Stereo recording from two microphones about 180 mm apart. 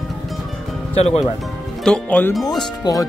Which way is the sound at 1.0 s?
35° left (ahead or behind).